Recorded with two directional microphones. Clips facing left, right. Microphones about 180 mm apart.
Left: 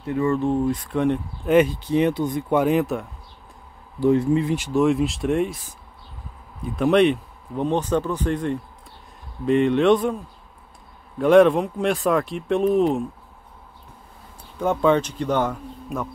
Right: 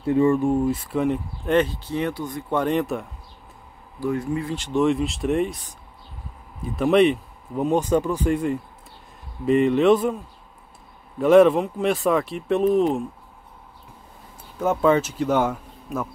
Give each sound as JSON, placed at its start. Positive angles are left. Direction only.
{"t": 0.0, "sound": "speech", "side_deg": -25}
{"t": 0.3, "sound": "speech", "side_deg": -10}
{"t": 1.5, "sound": "speech", "side_deg": 15}
{"t": 2.6, "sound": "speech", "side_deg": 0}
{"t": 4.0, "sound": "speech", "side_deg": 25}
{"t": 4.6, "sound": "speech", "side_deg": 5}
{"t": 6.6, "sound": "speech", "side_deg": 0}
{"t": 14.6, "sound": "speech", "side_deg": -5}